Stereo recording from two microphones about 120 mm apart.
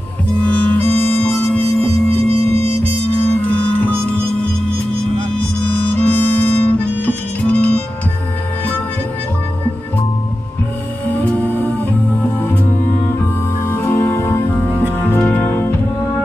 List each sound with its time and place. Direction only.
0.4 s music: 10° left (ahead or behind)
5.7 s music: 15° left (ahead or behind)
11.1 s music: 15° left (ahead or behind)
13.7 s music: 15° left (ahead or behind)